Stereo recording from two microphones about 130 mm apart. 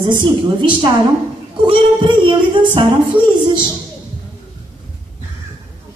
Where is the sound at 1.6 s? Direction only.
40° right (ahead or behind).